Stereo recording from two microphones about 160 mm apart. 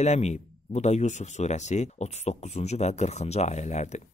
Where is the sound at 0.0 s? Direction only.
45° left (ahead or behind).